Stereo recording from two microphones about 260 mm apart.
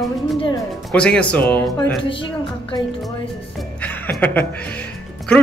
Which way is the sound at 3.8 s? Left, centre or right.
Centre.